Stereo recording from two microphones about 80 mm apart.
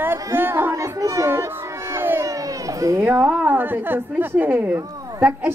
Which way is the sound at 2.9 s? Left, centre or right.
Right.